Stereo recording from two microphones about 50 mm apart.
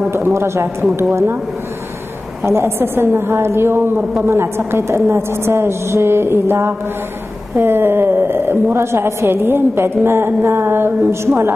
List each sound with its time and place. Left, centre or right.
0.1 s a woman's voice: right
2.4 s a woman's voice: right